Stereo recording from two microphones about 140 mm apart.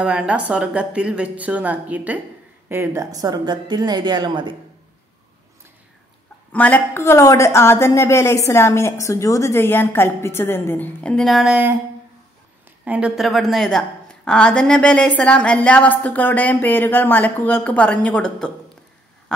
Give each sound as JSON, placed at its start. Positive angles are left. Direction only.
{"t": 0.0, "sound": "a woman's voice", "side_deg": -10}
{"t": 6.5, "sound": "a woman's voice", "side_deg": 10}
{"t": 12.8, "sound": "a woman's voice", "side_deg": -10}